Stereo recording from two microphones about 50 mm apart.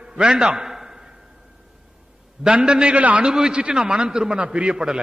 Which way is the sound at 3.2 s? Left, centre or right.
Centre.